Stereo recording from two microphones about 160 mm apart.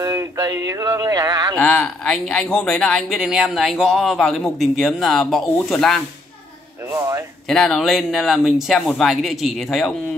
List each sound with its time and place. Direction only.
0.0 s speech: 20° right (ahead or behind)
1.6 s speech: 5° left (ahead or behind)
6.9 s speech: 20° right (ahead or behind)
7.4 s speech: 5° left (ahead or behind)